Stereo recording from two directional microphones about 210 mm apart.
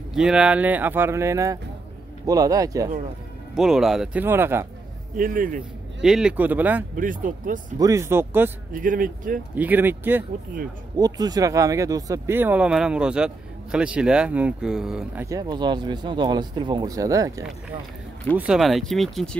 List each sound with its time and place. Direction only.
0.1 s speech: 5° right (ahead or behind)
3.5 s speech: centre (ahead or behind)
5.1 s speech: 40° right (ahead or behind)
5.9 s speech: centre (ahead or behind)
7.0 s speech: 40° right (ahead or behind)
7.8 s speech: 15° right (ahead or behind)
8.7 s speech: 40° right (ahead or behind)
9.6 s speech: 10° right (ahead or behind)
15.2 s speech: 20° right (ahead or behind)
18.4 s speech: centre (ahead or behind)